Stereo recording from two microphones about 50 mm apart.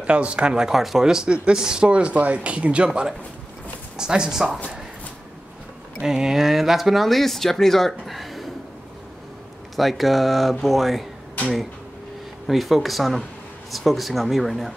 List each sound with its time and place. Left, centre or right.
0.0 s speech: right
0.7 s speech: centre
6.0 s speech: centre
9.8 s speech: centre
12.4 s speech: centre